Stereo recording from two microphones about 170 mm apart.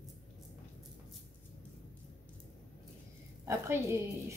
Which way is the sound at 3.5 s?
15° right (ahead or behind).